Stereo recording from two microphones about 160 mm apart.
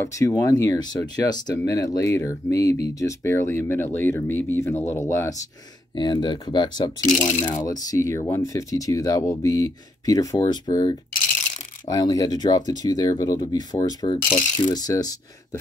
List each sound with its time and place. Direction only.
0.0 s speech: 20° left (ahead or behind)
5.9 s speech: 25° left (ahead or behind)
7.0 s speech: 50° left (ahead or behind)
7.6 s speech: 20° left (ahead or behind)